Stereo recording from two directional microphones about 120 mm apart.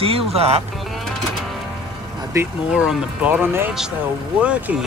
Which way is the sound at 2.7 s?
5° right (ahead or behind).